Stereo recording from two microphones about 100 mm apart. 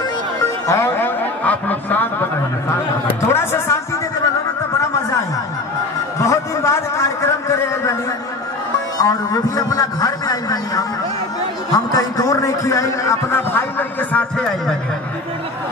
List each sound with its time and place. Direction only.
0.7 s speech: 25° left (ahead or behind)
3.3 s a man's voice: 25° left (ahead or behind)
6.2 s a man's voice: 30° left (ahead or behind)
8.9 s a man's voice: 40° left (ahead or behind); by 14.2 s 20° left (ahead or behind)
14.3 s a man's voice: 5° left (ahead or behind)